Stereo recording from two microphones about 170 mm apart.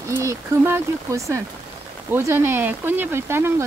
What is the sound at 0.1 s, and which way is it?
Speech, 15° right (ahead or behind).